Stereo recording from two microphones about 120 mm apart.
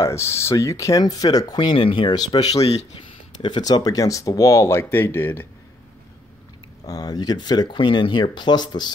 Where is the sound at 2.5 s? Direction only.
60° left (ahead or behind).